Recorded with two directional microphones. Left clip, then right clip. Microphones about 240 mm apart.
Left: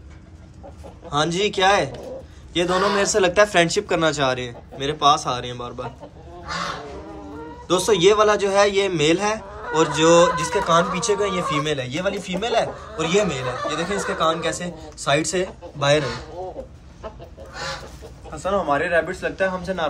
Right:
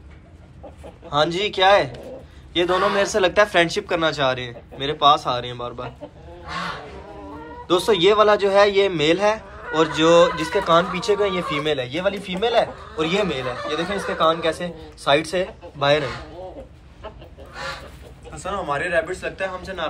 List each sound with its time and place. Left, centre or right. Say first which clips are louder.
1.1 s a man's voice: right 1 dB; centre
7.6 s a man's voice: even; centre
13.4 s speech: even; left
13.9 s a man's voice: right 3 dB; centre
18.3 s a man's voice: left 4 dB; left